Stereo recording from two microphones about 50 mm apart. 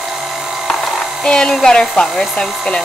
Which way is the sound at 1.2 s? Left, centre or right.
Centre.